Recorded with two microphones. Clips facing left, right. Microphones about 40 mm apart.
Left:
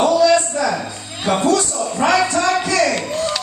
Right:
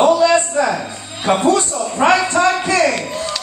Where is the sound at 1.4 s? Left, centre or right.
Right.